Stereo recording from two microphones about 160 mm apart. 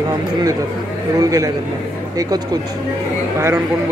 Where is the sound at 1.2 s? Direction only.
20° right (ahead or behind).